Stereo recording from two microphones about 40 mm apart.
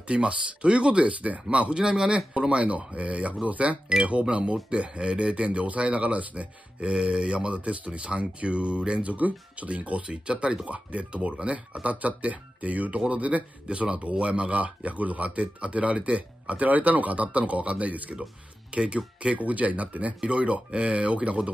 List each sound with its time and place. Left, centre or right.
0.1 s speech: right
1.7 s speech: centre; by 18.2 s right
18.8 s speech: right
19.3 s speech: right
20.2 s speech: right